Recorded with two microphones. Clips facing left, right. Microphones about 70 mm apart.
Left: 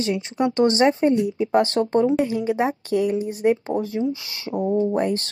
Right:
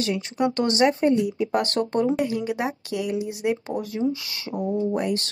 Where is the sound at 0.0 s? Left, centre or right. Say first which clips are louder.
Left 2 dB; left.